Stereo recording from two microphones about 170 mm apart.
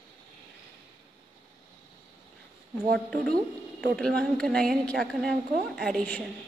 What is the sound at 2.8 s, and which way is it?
Speech, 65° right (ahead or behind).